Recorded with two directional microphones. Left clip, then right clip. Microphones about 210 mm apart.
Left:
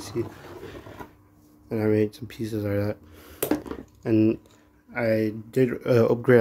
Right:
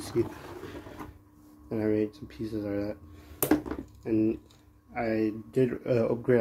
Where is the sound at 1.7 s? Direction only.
30° left (ahead or behind).